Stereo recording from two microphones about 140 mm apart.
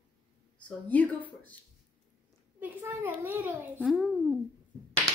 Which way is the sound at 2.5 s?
15° right (ahead or behind).